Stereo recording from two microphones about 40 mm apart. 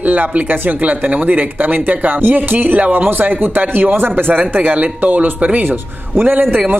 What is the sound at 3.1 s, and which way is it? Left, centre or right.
Speech, right.